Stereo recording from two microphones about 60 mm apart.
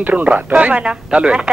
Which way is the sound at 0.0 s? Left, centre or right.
Right.